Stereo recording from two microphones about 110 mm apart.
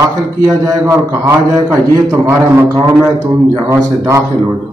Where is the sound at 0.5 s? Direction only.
30° right (ahead or behind).